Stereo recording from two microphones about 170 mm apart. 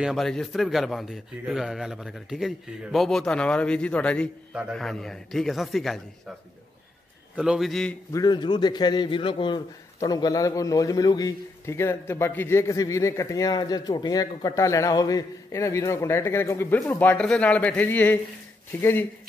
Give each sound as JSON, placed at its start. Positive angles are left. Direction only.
{"t": 0.0, "sound": "a man's voice", "side_deg": 0}
{"t": 4.5, "sound": "a man's voice", "side_deg": -5}
{"t": 7.3, "sound": "a man's voice", "side_deg": -5}
{"t": 8.1, "sound": "a man's voice", "side_deg": 25}